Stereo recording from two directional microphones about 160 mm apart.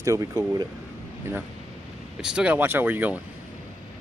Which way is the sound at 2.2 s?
5° right (ahead or behind).